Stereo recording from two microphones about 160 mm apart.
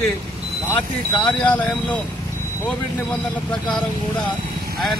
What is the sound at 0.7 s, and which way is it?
Speech, 10° left (ahead or behind).